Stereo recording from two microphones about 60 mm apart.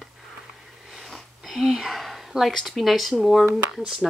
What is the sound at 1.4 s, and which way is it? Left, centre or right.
Speech, centre.